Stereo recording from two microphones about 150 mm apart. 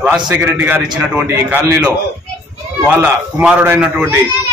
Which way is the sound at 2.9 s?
10° right (ahead or behind).